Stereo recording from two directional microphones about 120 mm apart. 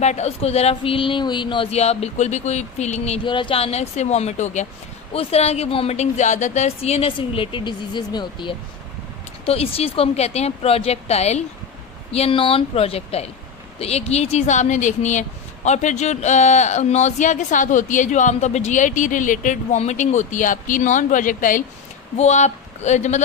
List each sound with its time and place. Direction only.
0.0 s a woman's voice: 70° left (ahead or behind); by 1.7 s 40° left (ahead or behind)
1.7 s speech: 60° left (ahead or behind)
3.3 s a woman's voice: 45° left (ahead or behind)
9.5 s a woman's voice: 55° left (ahead or behind)
12.1 s a woman's voice: 55° left (ahead or behind); by 21.6 s 90° left
22.1 s speech: 70° left (ahead or behind)